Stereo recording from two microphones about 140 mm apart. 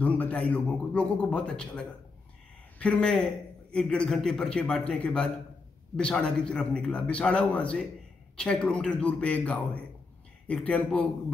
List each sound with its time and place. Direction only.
0.0 s a man's voice: 10° left (ahead or behind)